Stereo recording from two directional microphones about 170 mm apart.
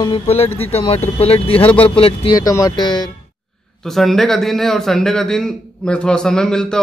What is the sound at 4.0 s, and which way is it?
A man's voice, centre (ahead or behind).